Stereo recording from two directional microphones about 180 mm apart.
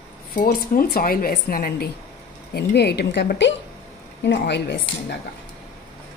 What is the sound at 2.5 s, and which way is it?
A woman's voice, 65° left (ahead or behind).